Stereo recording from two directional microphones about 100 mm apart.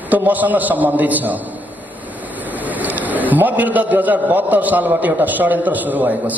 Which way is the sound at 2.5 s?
15° right (ahead or behind).